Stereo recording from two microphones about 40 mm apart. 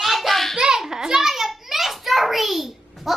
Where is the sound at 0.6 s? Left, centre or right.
Centre.